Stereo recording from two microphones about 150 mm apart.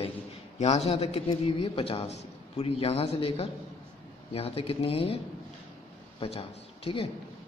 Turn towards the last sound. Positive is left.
turn(degrees=40)  # may be behind; listen again after turning